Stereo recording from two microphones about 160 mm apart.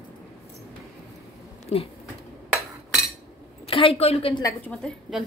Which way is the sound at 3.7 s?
35° left (ahead or behind).